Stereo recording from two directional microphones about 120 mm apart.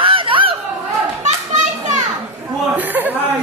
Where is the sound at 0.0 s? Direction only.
45° right (ahead or behind).